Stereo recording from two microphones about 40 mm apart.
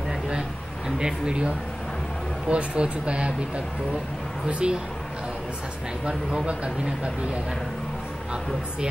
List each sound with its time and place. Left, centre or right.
0.3 s a sound: centre
2.4 s speech: right
6.0 s speech: right